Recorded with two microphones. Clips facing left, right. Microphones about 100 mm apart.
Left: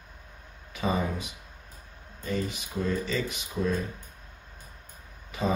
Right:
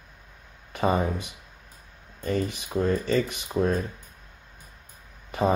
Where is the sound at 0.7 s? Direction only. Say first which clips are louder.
Right 4 dB; 55° right (ahead or behind).